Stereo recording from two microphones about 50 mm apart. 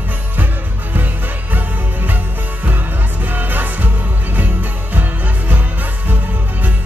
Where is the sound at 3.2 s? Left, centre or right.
Right.